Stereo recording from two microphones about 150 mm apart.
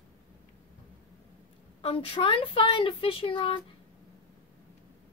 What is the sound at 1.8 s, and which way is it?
Speech, 35° left (ahead or behind).